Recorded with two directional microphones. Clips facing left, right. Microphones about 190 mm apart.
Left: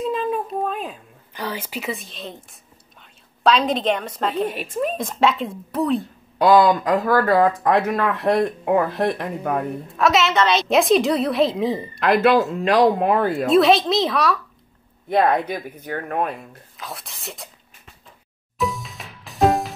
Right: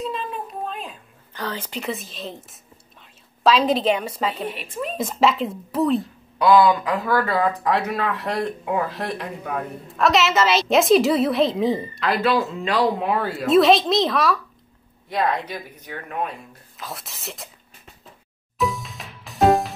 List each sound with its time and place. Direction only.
0.3 s a sound: 45° left (ahead or behind)
1.3 s a woman's voice: 10° left (ahead or behind)
6.3 s speech: 55° left (ahead or behind)
9.9 s a woman's voice: centre (ahead or behind)
12.0 s speech: 50° left (ahead or behind)
13.5 s a woman's voice: centre (ahead or behind)
15.0 s speech: 55° left (ahead or behind)
16.7 s speech: centre (ahead or behind)
18.6 s music: centre (ahead or behind)